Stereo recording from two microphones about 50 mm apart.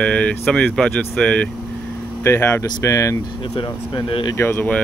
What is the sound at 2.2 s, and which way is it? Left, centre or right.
Speech, left.